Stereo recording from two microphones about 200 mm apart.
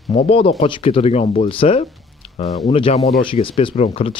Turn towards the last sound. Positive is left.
turn(degrees=30)  # may be behind; listen again after turning